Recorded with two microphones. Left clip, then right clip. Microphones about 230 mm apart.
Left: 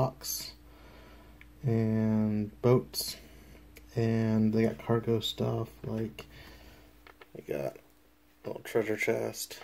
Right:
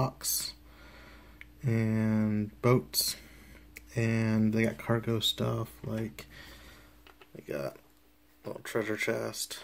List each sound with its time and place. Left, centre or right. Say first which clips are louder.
0.0 s a sound: even; right
1.6 s speech: left 1 dB; right
7.4 s speech: left 1 dB; centre